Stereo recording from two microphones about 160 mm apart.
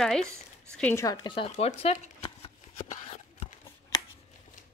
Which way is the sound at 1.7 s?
40° left (ahead or behind).